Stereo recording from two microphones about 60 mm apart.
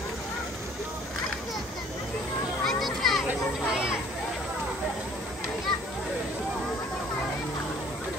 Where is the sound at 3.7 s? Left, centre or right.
Centre.